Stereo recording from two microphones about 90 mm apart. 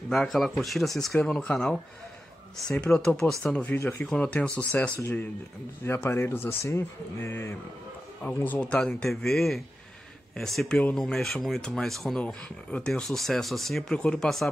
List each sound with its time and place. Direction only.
0.1 s speech: 5° left (ahead or behind)